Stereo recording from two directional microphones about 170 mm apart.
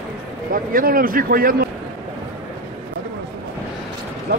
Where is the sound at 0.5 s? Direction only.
55° right (ahead or behind).